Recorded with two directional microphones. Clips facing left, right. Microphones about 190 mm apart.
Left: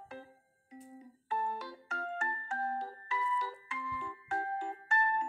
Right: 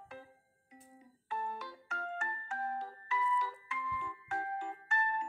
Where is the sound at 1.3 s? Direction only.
35° left (ahead or behind).